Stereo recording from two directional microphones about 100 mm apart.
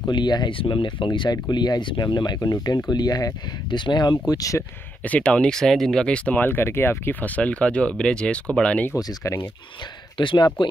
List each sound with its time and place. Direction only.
0.1 s speech: 45° left (ahead or behind)
4.3 s speech: 35° left (ahead or behind)
5.0 s speech: 15° left (ahead or behind)
8.9 s speech: 30° left (ahead or behind)
10.1 s speech: 50° left (ahead or behind)